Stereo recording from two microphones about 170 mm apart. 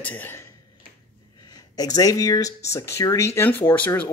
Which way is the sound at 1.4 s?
25° left (ahead or behind).